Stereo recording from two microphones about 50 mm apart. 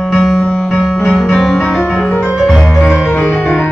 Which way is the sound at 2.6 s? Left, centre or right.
Centre.